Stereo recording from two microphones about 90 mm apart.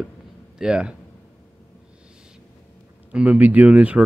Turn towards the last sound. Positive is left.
turn(degrees=-15)  # may be behind; listen again after turning